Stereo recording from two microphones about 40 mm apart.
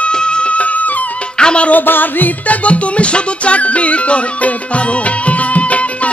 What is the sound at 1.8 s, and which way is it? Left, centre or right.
Music, left.